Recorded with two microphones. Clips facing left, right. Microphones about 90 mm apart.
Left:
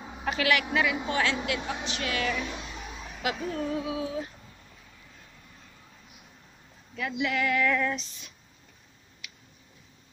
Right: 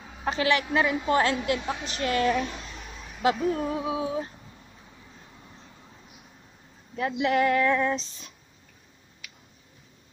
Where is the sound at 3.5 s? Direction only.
15° right (ahead or behind).